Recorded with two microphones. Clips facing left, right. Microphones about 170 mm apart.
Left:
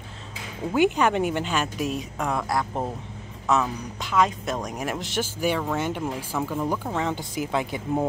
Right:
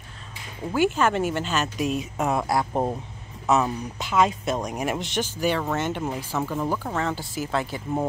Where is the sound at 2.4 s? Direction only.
10° right (ahead or behind).